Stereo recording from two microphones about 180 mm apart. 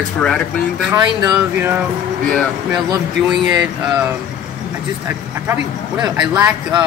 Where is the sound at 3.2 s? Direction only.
5° right (ahead or behind).